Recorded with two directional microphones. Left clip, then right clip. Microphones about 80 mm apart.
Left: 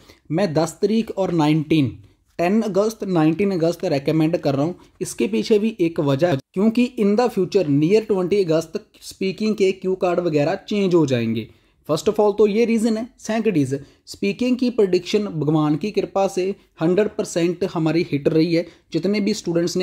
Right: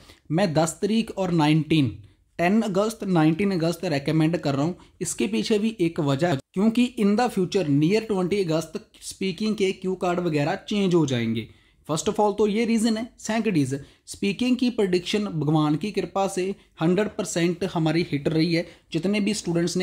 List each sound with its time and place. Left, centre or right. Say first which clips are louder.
0.4 s speech: left 3 dB; left
11.9 s speech: left 5 dB; left